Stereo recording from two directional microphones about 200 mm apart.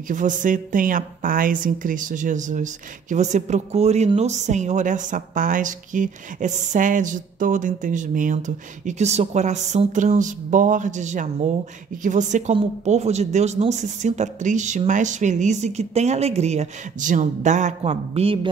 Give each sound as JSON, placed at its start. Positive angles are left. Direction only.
{"t": 0.1, "sound": "a woman's voice", "side_deg": -40}